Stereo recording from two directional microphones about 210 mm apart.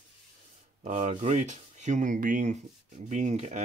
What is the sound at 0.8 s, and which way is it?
Speech, 35° right (ahead or behind).